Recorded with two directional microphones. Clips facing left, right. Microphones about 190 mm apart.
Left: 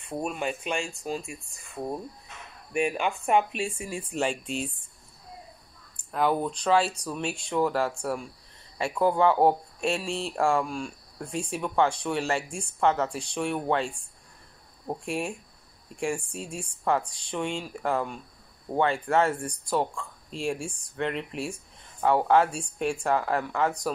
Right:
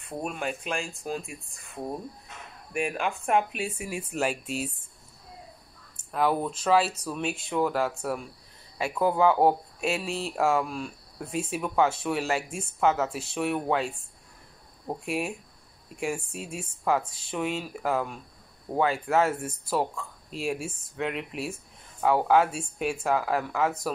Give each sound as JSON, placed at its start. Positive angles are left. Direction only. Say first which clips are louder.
{"t": 0.0, "sound": "speech", "louder": "left 2 dB", "side_deg": 0}
{"t": 5.9, "sound": "speech", "louder": "even", "side_deg": 0}